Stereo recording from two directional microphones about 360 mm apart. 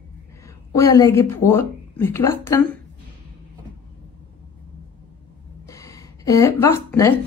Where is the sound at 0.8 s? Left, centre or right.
Centre.